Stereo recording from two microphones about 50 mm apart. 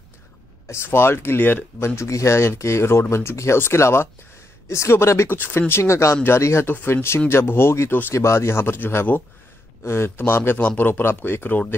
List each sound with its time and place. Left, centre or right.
0.8 s speech: left
2.0 s speech: left
5.3 s speech: left
8.1 s speech: left
9.8 s speech: left